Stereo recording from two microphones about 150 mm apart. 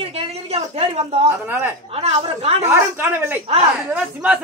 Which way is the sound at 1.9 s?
45° right (ahead or behind).